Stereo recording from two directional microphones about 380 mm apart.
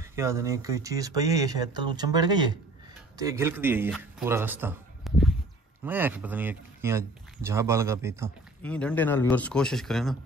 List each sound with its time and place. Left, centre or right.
0.1 s a man's voice: centre